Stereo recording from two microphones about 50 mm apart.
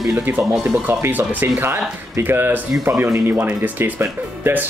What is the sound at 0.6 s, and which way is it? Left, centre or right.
Speech, right.